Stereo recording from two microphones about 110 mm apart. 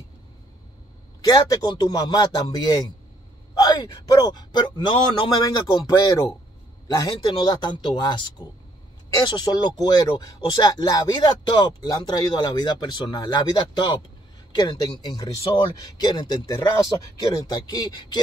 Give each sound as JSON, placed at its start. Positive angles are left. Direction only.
{"t": 1.2, "sound": "a man's voice", "side_deg": 35}
{"t": 5.9, "sound": "speech", "side_deg": 35}